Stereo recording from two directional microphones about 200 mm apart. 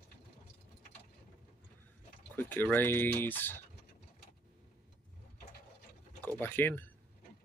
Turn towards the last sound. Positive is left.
turn(degrees=10)  # may be behind; listen again after turning